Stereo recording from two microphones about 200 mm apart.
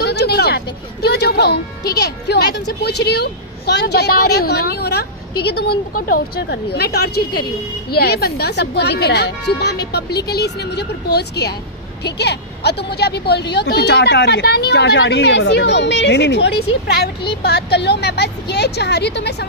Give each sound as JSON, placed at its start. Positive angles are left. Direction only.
{"t": 0.0, "sound": "vehicle", "side_deg": 55}
{"t": 1.0, "sound": "a woman's voice", "side_deg": 55}